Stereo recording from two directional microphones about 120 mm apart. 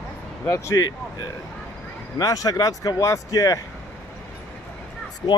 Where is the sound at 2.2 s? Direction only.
30° left (ahead or behind).